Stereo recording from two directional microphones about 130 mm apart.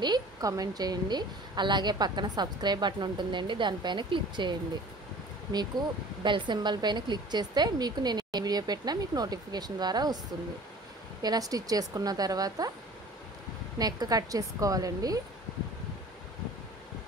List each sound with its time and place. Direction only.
0.0 s a woman's voice: 30° right (ahead or behind)
6.2 s a woman's voice: 35° right (ahead or behind)
11.2 s a woman's voice: 30° right (ahead or behind)
13.7 s a woman's voice: 30° right (ahead or behind)